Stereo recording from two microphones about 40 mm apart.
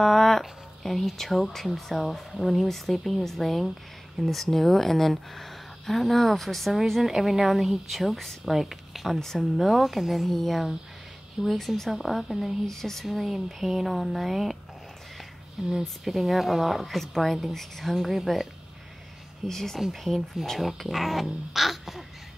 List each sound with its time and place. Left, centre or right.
0.0 s speech: centre
13.0 s speech: centre
19.4 s speech: centre